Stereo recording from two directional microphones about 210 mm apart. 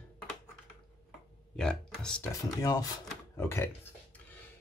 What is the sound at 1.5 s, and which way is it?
Speech, 5° left (ahead or behind).